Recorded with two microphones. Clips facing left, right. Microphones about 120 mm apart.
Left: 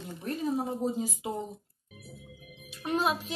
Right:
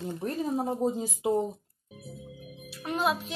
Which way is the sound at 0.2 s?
35° right (ahead or behind).